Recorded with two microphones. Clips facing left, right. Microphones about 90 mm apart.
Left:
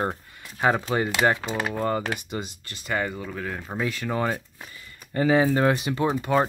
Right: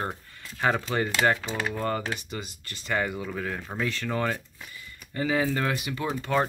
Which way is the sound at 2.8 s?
Centre (ahead or behind).